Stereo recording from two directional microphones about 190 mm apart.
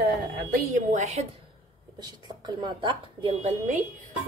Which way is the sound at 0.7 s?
40° right (ahead or behind).